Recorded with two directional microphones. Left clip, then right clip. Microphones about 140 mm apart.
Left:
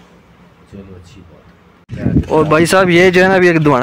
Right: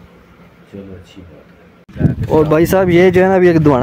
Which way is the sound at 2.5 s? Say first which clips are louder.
Left 4 dB; 15° right (ahead or behind).